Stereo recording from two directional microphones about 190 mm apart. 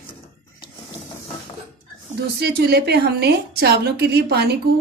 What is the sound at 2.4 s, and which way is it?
Speech, 55° right (ahead or behind).